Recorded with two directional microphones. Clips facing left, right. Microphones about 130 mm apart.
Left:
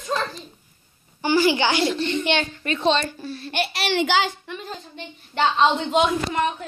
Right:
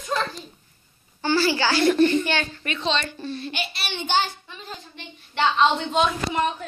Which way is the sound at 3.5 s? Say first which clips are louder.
Left 7 dB; 65° left (ahead or behind).